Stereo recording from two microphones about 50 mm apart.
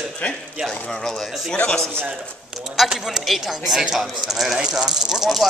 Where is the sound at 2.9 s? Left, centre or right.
Centre.